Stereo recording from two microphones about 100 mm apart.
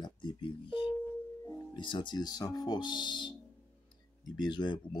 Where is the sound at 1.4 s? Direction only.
25° left (ahead or behind).